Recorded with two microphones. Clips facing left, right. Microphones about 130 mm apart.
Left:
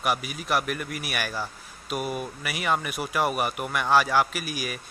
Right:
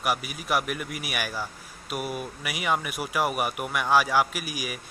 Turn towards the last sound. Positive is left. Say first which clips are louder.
# left 1 dB
turn(degrees=-10)  # may be behind; listen again after turning